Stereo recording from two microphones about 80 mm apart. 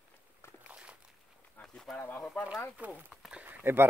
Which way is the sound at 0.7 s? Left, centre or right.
Centre.